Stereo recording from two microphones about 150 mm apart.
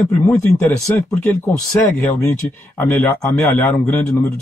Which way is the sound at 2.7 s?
15° left (ahead or behind).